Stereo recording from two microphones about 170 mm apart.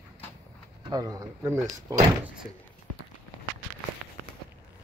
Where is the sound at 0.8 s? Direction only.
20° right (ahead or behind).